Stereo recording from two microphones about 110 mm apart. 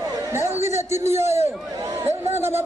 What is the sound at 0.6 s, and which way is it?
Speech, 90° left.